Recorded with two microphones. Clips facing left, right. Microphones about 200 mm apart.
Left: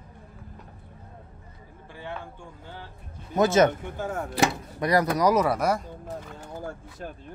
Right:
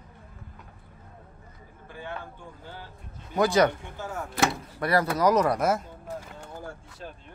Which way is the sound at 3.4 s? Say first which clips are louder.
Left 2 dB; 20° left (ahead or behind).